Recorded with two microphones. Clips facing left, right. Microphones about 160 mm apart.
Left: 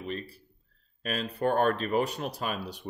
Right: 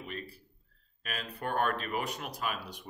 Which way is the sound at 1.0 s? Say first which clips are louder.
Left 9 dB; 35° left (ahead or behind).